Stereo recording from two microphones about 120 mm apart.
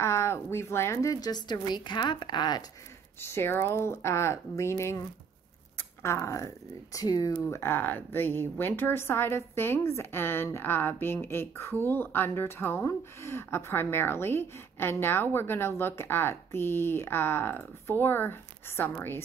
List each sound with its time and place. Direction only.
0.0 s a woman's voice: 20° left (ahead or behind); by 2.6 s 35° left (ahead or behind)
3.2 s a woman's voice: 20° left (ahead or behind)
7.4 s a woman's voice: 20° left (ahead or behind)